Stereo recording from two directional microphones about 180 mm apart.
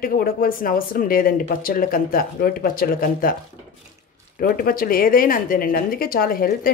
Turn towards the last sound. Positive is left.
turn(degrees=55)  # may be behind; listen again after turning